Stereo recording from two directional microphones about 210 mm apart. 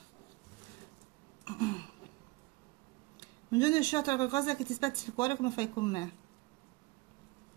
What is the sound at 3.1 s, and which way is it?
Speech, 15° left (ahead or behind).